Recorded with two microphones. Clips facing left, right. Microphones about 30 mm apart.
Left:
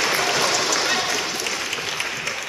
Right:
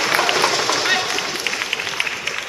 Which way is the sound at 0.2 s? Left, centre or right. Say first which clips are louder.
Right 3 dB; right.